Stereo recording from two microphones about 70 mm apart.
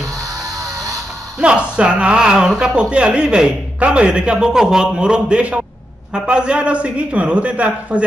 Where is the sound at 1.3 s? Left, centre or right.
Centre.